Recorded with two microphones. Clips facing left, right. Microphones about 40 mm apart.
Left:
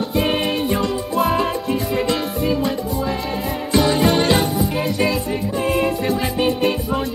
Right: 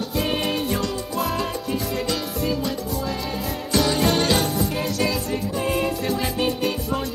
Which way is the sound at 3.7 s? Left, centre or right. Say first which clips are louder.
Left 4 dB; centre.